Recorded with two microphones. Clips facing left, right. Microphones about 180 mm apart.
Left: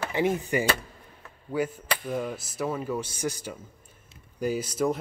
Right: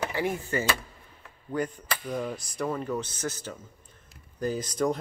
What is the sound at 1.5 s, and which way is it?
Speech, 5° left (ahead or behind).